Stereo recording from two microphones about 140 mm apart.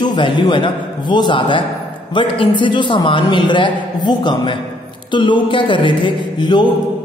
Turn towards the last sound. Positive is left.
turn(degrees=35)  # may be behind; listen again after turning